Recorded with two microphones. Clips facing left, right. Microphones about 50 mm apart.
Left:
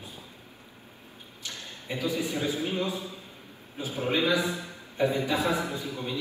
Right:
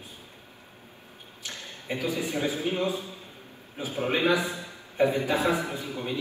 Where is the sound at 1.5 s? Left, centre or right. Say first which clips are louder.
Right 2 dB; right.